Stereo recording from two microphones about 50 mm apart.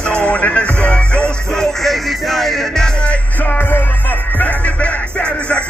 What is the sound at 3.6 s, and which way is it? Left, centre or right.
Music, left.